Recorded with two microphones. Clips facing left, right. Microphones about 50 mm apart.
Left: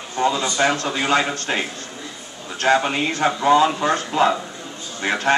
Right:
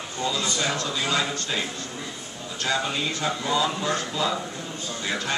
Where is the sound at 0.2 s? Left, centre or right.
Left.